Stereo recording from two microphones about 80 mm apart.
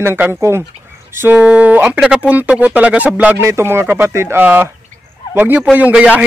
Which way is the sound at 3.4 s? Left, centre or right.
Right.